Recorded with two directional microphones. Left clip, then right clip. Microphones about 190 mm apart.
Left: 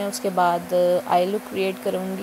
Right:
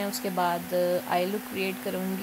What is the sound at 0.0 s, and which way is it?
Speech, 10° left (ahead or behind).